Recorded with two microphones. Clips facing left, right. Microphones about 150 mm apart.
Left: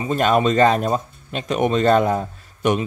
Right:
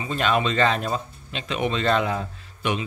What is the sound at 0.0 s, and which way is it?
Speech, 45° left (ahead or behind).